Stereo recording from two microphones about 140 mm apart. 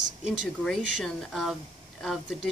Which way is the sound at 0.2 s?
Centre (ahead or behind).